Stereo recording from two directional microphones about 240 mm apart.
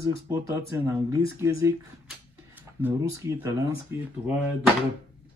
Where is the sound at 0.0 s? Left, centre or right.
Centre.